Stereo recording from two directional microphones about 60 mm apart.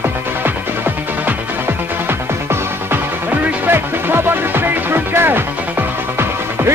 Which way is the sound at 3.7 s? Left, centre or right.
Right.